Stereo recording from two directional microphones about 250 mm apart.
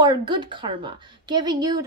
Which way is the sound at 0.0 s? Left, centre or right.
Centre.